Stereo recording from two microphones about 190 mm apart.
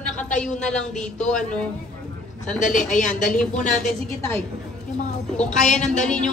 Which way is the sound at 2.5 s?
40° left (ahead or behind).